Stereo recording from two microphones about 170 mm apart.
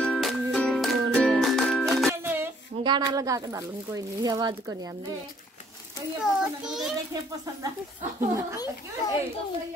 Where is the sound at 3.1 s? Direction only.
20° right (ahead or behind).